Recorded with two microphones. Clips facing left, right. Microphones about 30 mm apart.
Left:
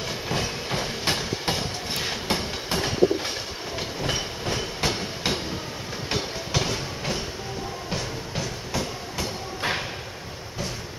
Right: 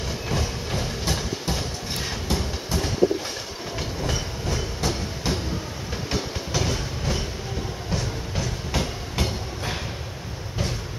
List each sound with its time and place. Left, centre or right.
0.3 s train: left
1.6 s a sound: left
2.2 s train: left
6.0 s train: centre
8.7 s train: right